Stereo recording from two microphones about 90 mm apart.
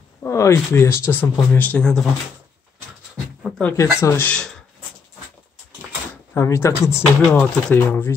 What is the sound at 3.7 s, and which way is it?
Speech, 35° left (ahead or behind).